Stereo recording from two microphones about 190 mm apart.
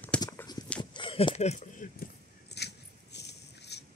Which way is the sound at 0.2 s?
15° left (ahead or behind).